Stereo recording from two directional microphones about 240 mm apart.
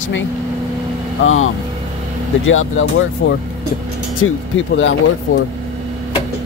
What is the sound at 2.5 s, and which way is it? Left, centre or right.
Speech, left.